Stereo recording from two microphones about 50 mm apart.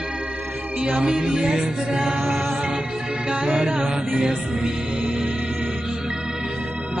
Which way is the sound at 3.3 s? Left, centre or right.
Centre.